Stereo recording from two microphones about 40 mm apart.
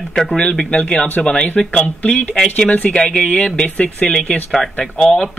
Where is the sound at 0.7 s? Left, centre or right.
Left.